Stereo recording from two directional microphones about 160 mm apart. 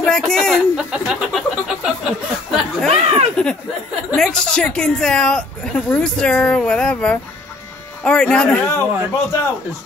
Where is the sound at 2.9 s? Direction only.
35° right (ahead or behind).